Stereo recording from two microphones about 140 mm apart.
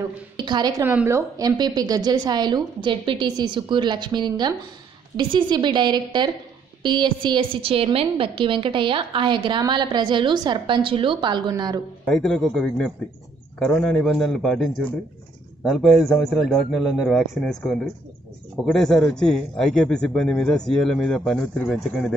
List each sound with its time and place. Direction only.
0.4 s a woman's voice: 30° right (ahead or behind)
0.8 s a woman's voice: 15° right (ahead or behind)
12.1 s a man's voice: 5° left (ahead or behind)